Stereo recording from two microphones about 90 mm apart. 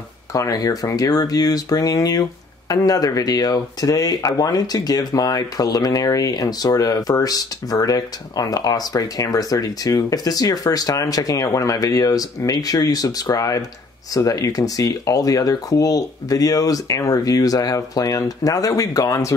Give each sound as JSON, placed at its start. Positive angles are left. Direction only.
{"t": 0.3, "sound": "speech", "side_deg": 40}